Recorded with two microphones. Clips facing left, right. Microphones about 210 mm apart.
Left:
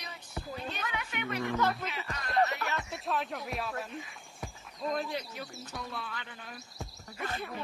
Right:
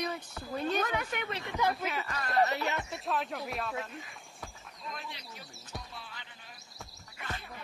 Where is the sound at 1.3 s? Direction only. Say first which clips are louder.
Left 3 dB; 20° right (ahead or behind).